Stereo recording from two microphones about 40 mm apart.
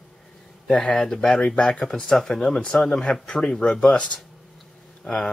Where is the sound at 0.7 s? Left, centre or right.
Left.